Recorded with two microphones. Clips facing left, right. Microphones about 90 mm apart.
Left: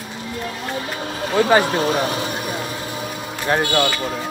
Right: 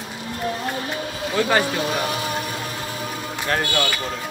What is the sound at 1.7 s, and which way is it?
Speech, 35° left (ahead or behind).